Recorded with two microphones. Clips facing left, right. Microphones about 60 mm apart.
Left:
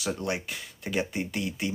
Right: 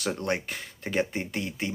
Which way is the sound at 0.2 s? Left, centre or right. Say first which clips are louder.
Right 2 dB; right.